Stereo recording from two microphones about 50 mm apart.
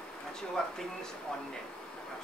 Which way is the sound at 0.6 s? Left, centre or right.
Centre.